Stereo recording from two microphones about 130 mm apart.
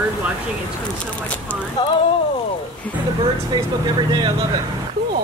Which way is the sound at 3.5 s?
35° right (ahead or behind).